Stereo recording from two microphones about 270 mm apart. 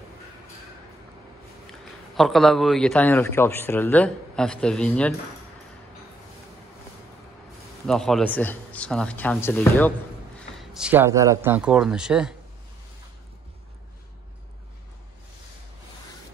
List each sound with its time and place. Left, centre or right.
1.7 s speech: centre
7.8 s speech: centre